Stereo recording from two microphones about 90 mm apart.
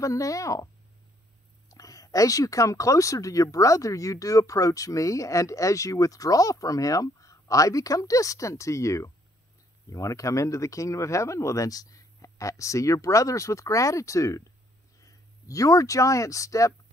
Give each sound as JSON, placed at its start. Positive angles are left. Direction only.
{"t": 0.0, "sound": "speech", "side_deg": 40}
{"t": 1.7, "sound": "speech", "side_deg": 40}